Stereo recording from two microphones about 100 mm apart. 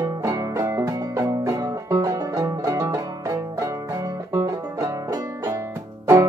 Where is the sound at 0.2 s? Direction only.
35° right (ahead or behind).